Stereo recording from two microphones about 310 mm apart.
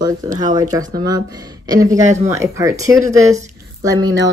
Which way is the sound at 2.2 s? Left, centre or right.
Centre.